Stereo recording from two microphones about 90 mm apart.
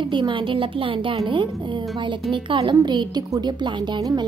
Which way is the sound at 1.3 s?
65° right (ahead or behind).